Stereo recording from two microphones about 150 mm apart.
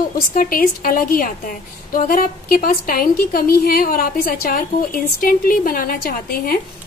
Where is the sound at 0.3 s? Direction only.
70° left (ahead or behind).